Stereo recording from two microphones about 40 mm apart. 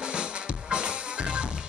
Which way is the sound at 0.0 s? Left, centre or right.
Right.